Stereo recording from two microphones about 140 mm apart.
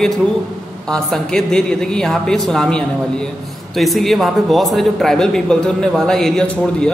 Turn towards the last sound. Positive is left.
turn(degrees=5)  # may be behind; listen again after turning